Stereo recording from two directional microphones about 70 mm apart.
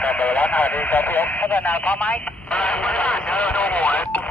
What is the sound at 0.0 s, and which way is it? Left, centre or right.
Speech, left.